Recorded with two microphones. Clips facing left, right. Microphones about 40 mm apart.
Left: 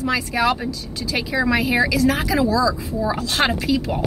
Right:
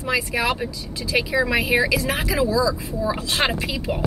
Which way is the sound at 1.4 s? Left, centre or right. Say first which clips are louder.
Left 1 dB; centre.